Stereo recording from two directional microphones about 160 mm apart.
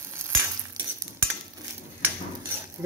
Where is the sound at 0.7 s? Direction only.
20° right (ahead or behind).